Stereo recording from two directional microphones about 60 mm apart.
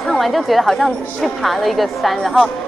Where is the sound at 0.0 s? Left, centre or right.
Centre.